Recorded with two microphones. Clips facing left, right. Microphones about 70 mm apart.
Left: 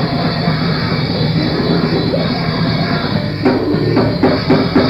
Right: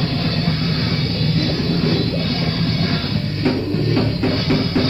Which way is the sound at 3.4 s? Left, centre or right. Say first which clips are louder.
Left 7 dB; left.